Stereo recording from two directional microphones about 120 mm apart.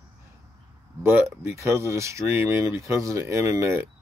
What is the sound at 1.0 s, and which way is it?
Speech, 20° right (ahead or behind).